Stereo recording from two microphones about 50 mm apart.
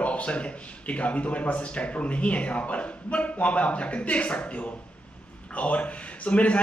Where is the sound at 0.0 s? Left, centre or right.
Left.